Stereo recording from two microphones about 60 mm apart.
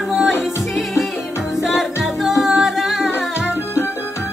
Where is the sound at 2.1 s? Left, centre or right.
Centre.